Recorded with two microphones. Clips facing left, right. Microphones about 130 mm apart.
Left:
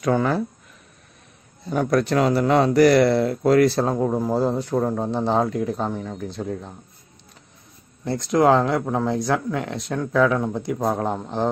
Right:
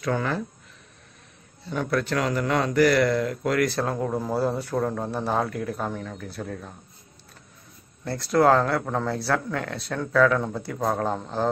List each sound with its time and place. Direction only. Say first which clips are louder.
0.1 s speech: left 6 dB; 35° left (ahead or behind)
1.7 s speech: left 5 dB; 45° left (ahead or behind)
3.9 s speech: left 5 dB; 15° left (ahead or behind)
8.3 s speech: left 2 dB; 15° left (ahead or behind)